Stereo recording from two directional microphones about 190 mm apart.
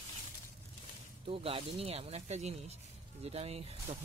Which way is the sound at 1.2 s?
30° right (ahead or behind).